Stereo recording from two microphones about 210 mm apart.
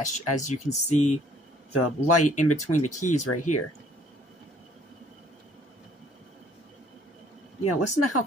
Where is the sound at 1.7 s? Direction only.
90° left.